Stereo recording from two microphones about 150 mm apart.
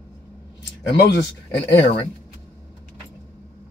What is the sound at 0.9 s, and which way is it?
Speech, 90° left.